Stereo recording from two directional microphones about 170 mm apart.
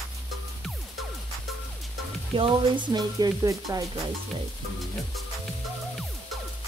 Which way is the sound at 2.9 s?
25° right (ahead or behind).